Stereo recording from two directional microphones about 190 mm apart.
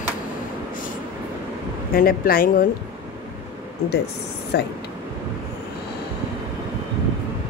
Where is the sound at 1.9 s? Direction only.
50° left (ahead or behind).